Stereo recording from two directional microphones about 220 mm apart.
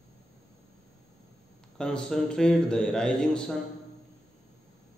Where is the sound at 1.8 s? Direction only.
5° left (ahead or behind).